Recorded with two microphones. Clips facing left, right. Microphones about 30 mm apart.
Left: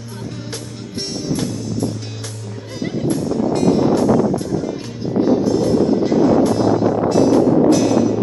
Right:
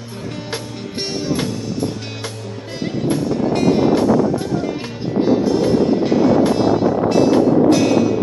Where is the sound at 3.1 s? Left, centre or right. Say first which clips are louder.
Even; right.